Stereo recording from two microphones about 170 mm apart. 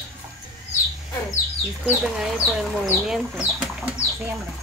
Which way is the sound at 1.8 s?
5° right (ahead or behind).